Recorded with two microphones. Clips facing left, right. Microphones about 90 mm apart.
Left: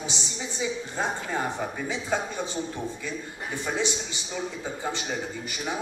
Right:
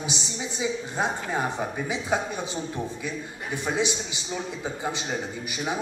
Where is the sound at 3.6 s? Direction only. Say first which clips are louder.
Right 2 dB; 15° right (ahead or behind).